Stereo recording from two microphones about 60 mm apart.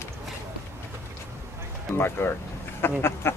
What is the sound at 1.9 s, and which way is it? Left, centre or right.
Speech, left.